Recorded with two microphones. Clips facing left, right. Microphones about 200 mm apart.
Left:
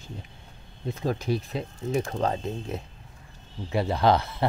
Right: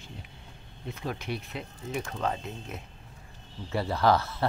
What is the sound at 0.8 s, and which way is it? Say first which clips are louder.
Speech: left 7 dB; 35° left (ahead or behind).